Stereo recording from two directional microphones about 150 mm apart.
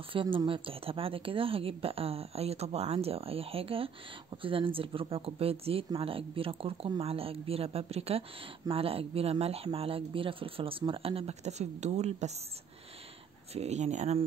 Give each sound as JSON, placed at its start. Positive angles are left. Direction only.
{"t": 0.1, "sound": "speech", "side_deg": -35}
{"t": 13.5, "sound": "speech", "side_deg": -45}